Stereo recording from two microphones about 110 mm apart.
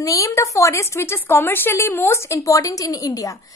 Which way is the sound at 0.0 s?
30° left (ahead or behind).